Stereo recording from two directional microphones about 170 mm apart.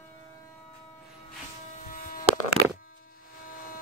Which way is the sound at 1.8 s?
50° left (ahead or behind).